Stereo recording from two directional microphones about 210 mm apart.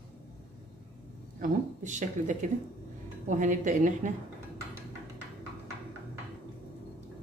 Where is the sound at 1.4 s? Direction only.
35° right (ahead or behind).